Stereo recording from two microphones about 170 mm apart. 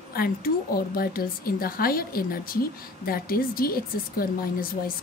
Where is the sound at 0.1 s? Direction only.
60° left (ahead or behind).